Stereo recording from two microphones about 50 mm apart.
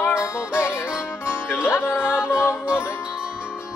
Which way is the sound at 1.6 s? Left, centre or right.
Left.